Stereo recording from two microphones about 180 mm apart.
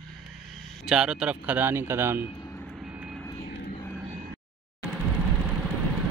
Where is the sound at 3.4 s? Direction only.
60° left (ahead or behind).